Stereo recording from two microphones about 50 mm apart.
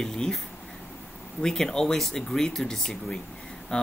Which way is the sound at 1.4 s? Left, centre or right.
Centre.